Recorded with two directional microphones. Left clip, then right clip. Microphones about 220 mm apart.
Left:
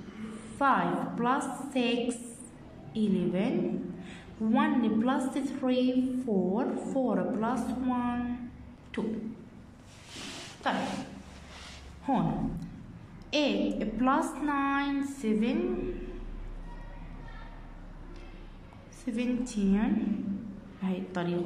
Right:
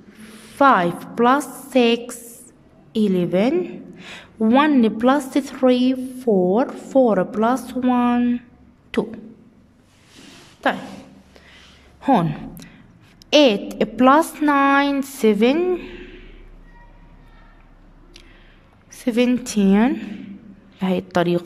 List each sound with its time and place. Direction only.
0.6 s a woman's voice: 50° right (ahead or behind)
8.9 s a sound: 50° right (ahead or behind)
12.0 s a woman's voice: 45° right (ahead or behind)
19.0 s a woman's voice: 50° right (ahead or behind)